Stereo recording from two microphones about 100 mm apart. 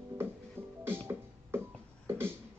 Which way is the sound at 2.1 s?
25° right (ahead or behind).